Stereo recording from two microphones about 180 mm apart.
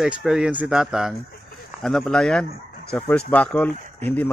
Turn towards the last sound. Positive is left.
turn(degrees=10)  # may be behind; listen again after turning